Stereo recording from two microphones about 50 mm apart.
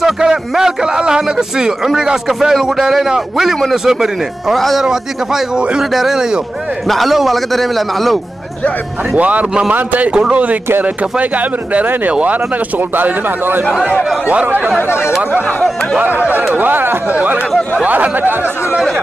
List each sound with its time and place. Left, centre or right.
0.0 s a man's voice: centre
4.6 s a man's voice: centre
4.8 s a man's voice: centre
5.9 s a man's voice: centre
9.1 s speech: right
14.8 s speech: left
16.2 s speech: right
17.1 s speech: right